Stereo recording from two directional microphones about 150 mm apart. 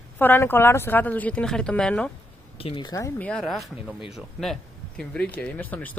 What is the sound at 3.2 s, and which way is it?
Speech, 5° left (ahead or behind).